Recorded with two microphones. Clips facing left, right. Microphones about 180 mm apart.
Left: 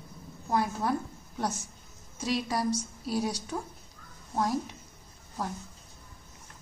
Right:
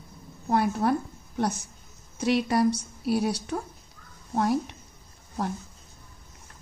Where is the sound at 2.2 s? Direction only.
65° right (ahead or behind).